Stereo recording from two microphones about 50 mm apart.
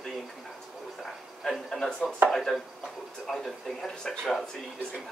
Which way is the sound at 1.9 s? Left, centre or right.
Centre.